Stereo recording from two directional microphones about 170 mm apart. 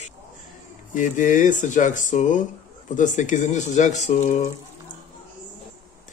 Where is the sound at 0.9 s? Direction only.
50° left (ahead or behind).